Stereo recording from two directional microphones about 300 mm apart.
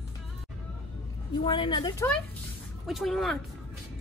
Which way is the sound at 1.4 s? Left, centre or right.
Centre.